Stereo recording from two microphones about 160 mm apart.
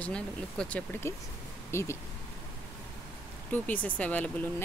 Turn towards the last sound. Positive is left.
turn(degrees=10)  # may be behind; listen again after turning